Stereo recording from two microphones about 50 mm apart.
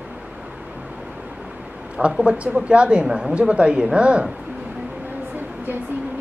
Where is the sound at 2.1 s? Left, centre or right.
Right.